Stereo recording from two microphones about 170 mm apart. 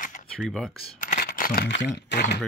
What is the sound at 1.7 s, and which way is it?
Speech, 90° left.